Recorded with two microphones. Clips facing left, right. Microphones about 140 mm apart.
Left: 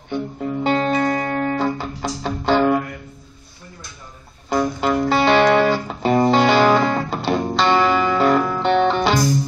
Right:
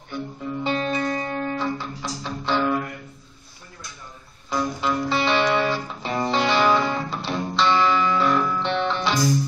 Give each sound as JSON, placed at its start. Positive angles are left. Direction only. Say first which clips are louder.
{"t": 0.1, "sound": "music", "louder": "left 6 dB", "side_deg": 50}
{"t": 0.7, "sound": "music", "louder": "left 6 dB", "side_deg": 65}
{"t": 4.5, "sound": "music", "louder": "left 5 dB", "side_deg": 55}